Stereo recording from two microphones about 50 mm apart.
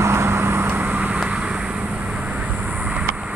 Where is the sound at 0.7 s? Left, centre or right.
Right.